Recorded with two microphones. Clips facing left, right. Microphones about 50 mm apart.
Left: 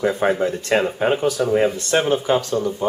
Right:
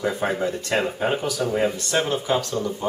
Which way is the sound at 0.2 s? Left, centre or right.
Centre.